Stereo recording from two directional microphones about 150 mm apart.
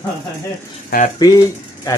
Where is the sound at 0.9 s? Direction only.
85° left.